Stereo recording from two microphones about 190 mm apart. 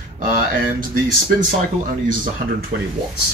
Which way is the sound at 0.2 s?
40° right (ahead or behind).